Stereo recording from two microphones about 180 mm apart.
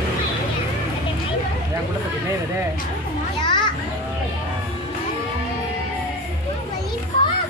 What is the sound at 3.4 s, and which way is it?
Children playing, 25° left (ahead or behind).